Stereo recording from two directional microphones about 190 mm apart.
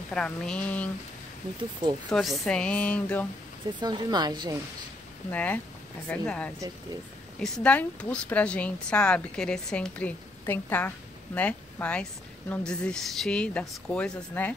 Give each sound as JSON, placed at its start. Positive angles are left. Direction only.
{"t": 0.1, "sound": "a woman's voice", "side_deg": 5}
{"t": 2.0, "sound": "a woman's voice", "side_deg": 0}
{"t": 3.8, "sound": "a woman's voice", "side_deg": -20}
{"t": 5.3, "sound": "a woman's voice", "side_deg": 10}